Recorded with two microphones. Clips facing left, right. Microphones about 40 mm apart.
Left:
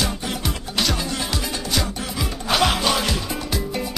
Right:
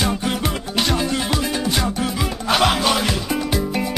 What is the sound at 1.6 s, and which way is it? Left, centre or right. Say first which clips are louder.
Music: right 4 dB; right.